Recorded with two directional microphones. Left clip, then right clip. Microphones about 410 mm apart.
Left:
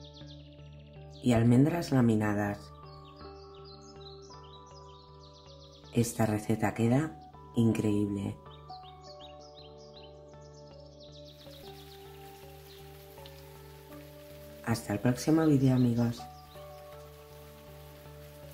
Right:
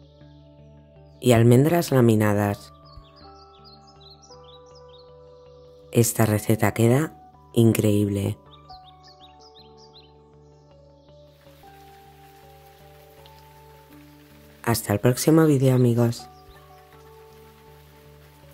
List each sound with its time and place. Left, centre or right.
1.2 s speech: right
5.9 s speech: right
14.6 s speech: right